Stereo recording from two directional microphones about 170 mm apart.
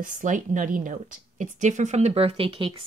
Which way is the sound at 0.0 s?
50° right (ahead or behind).